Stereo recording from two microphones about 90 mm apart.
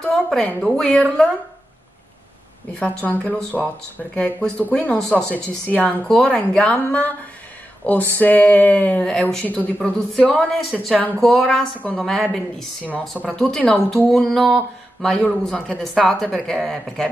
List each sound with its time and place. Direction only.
0.0 s a woman's voice: 5° left (ahead or behind)
2.7 s a woman's voice: 15° left (ahead or behind)